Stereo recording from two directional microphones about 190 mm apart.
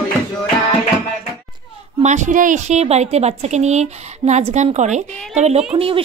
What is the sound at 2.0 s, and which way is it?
A woman's voice, 40° right (ahead or behind).